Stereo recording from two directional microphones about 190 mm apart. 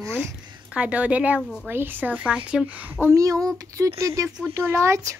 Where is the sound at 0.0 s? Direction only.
10° right (ahead or behind).